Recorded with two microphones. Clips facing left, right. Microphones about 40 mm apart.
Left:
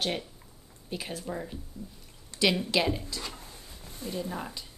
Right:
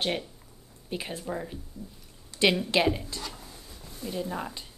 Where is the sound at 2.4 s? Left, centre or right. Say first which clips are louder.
Right 2 dB; right.